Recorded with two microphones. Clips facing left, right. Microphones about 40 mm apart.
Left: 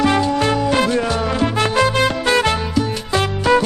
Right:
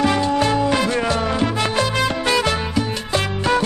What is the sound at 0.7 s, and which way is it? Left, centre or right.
Music, left.